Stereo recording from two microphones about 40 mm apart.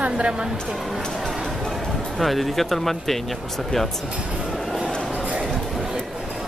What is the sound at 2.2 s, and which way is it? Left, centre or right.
Speech, centre.